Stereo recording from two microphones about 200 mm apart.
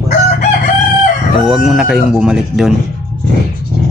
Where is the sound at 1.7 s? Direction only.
Centre (ahead or behind).